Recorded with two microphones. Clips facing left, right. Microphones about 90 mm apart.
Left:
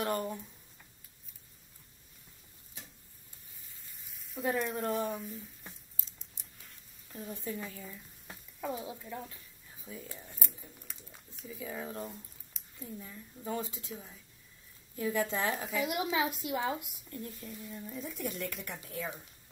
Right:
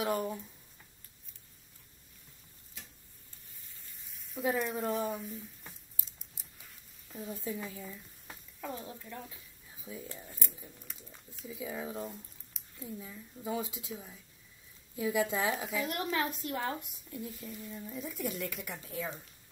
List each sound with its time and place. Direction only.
0.0 s speech: centre (ahead or behind)
4.0 s sizzle: centre (ahead or behind)
9.3 s a sound: 5° right (ahead or behind)
11.4 s speech: 5° right (ahead or behind)